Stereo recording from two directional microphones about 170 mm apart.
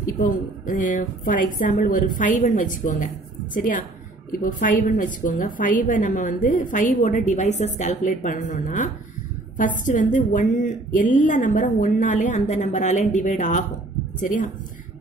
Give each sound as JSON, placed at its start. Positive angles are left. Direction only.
{"t": 0.2, "sound": "a woman's voice", "side_deg": 50}